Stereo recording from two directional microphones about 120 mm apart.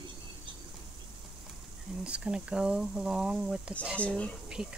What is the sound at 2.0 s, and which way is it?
Speech, 10° right (ahead or behind).